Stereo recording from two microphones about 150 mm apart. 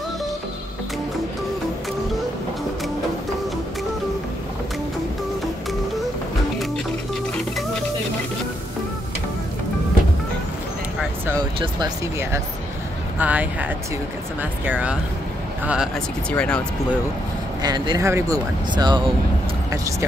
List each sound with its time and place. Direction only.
13.2 s speech: 10° right (ahead or behind)
16.3 s speech: 5° left (ahead or behind)
17.6 s speech: 30° right (ahead or behind)